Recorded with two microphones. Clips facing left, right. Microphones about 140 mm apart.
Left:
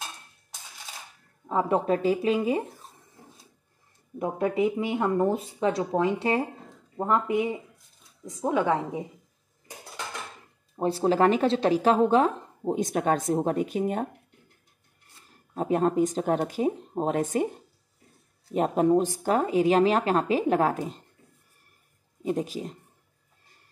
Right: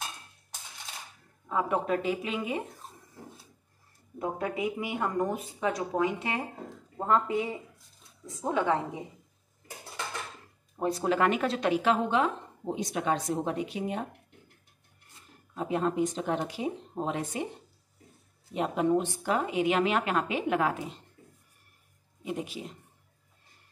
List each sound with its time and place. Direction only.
1.5 s a woman's voice: 35° left (ahead or behind)
4.2 s speech: 25° left (ahead or behind)
7.1 s a woman's voice: 20° left (ahead or behind)
10.8 s a woman's voice: 30° left (ahead or behind); by 14.0 s 45° left (ahead or behind)
15.5 s speech: 45° left (ahead or behind)
18.5 s a woman's voice: 40° left (ahead or behind)
22.2 s a woman's voice: 40° left (ahead or behind)